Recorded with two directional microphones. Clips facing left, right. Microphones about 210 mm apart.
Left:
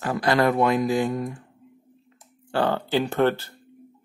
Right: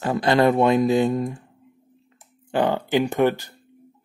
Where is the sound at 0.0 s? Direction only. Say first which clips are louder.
Right 3 dB; 25° right (ahead or behind).